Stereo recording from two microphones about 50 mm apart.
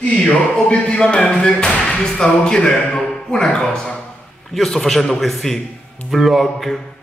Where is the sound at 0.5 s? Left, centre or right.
Centre.